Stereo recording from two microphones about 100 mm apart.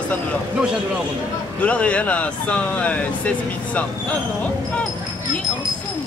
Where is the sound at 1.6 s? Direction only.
15° left (ahead or behind).